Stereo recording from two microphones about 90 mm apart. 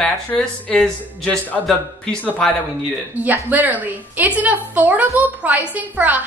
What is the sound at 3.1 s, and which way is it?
A woman's voice, 20° right (ahead or behind).